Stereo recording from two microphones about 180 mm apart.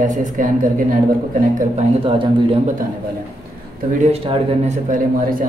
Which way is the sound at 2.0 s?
30° right (ahead or behind).